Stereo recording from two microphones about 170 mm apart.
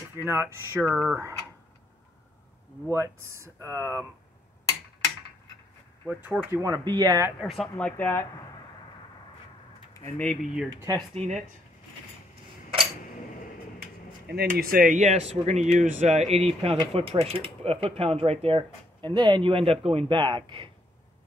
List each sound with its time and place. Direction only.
0.2 s speech: 15° right (ahead or behind)
2.9 s speech: 15° right (ahead or behind)
6.0 s speech: 10° right (ahead or behind)
6.6 s speech: 20° right (ahead or behind)
7.4 s speech: centre (ahead or behind)
7.7 s speech: 10° left (ahead or behind)
9.9 s speech: 10° left (ahead or behind)
10.4 s speech: 5° right (ahead or behind)
11.1 s speech: 40° right (ahead or behind)
14.2 s speech: 70° right (ahead or behind); by 20.7 s 30° right (ahead or behind)